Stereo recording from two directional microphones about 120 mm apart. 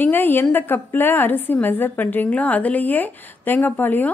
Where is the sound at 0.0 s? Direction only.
15° left (ahead or behind).